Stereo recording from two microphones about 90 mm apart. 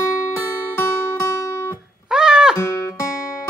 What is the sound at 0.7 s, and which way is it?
Music, 30° left (ahead or behind).